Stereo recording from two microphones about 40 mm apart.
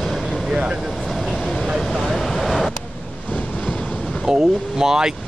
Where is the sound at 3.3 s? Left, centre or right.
Left.